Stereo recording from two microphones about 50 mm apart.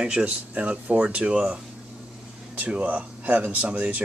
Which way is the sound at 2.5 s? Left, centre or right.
Right.